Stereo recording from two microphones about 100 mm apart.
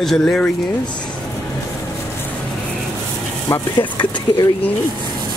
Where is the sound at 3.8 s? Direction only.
50° left (ahead or behind).